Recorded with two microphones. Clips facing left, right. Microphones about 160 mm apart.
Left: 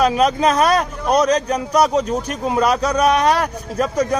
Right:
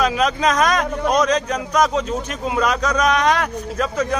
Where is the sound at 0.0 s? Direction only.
35° left (ahead or behind).